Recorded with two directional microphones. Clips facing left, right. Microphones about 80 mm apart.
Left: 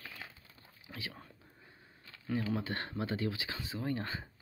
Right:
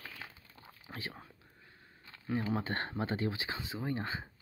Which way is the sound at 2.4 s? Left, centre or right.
Right.